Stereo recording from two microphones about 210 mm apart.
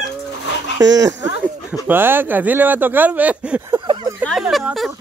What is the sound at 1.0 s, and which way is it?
Speech, 10° right (ahead or behind).